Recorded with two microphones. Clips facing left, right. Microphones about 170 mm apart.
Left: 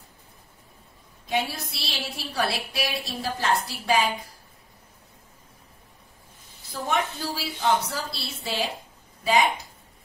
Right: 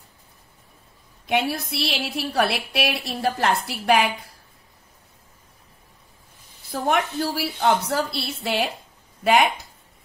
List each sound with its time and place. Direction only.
1.2 s a woman's voice: 60° right (ahead or behind)
6.7 s a woman's voice: 60° right (ahead or behind)